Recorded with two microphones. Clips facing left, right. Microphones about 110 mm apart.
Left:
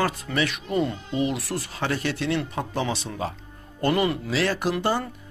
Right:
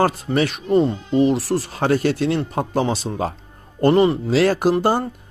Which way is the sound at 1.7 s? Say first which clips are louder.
Right 8 dB; 45° right (ahead or behind).